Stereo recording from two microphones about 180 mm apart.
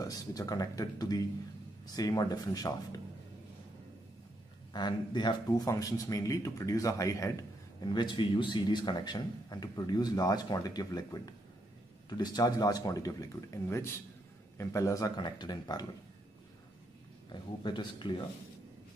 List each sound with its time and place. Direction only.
0.0 s speech: 20° left (ahead or behind)
4.7 s speech: 25° left (ahead or behind)
17.3 s speech: 25° left (ahead or behind)